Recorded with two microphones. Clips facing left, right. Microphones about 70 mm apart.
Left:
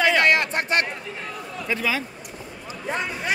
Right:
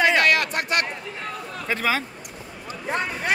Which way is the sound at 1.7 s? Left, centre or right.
Right.